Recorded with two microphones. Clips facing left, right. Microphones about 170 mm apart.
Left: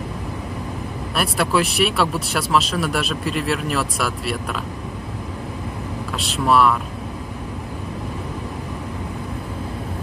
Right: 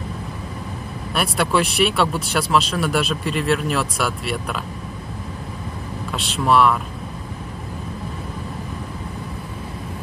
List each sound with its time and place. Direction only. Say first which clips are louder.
1.1 s speech: even; centre (ahead or behind)
6.1 s speech: even; centre (ahead or behind)